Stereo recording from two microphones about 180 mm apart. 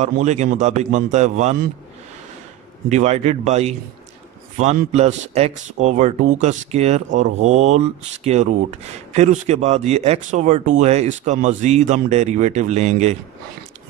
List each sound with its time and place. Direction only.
0.0 s speech: 40° right (ahead or behind)
2.9 s speech: 40° right (ahead or behind)